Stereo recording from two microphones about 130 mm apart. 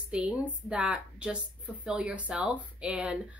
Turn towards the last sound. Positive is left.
turn(degrees=-10)  # may be behind; listen again after turning